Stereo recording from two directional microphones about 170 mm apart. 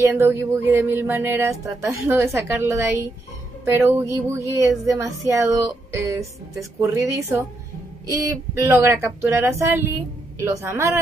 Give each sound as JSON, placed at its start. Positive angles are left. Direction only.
{"t": 0.0, "sound": "speech", "side_deg": -15}